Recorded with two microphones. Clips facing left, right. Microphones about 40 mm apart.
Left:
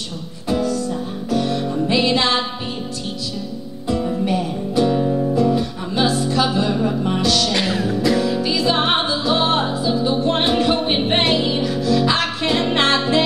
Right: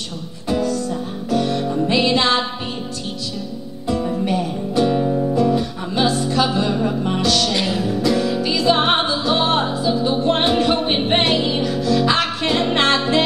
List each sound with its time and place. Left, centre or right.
0.5 s music: centre
3.8 s music: centre
7.5 s music: left
7.9 s music: centre